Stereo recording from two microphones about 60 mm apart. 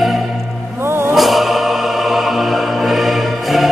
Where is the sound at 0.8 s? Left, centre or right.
Right.